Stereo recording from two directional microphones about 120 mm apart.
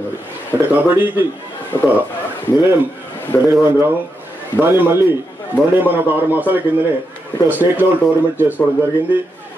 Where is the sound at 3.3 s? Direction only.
15° left (ahead or behind).